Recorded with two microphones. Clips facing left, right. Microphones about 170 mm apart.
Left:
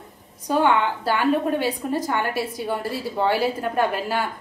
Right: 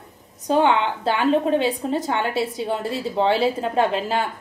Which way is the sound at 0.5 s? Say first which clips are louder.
Right 1 dB; 20° right (ahead or behind).